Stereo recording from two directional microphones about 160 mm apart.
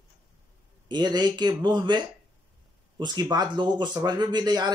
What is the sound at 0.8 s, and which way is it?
Speech, 25° right (ahead or behind).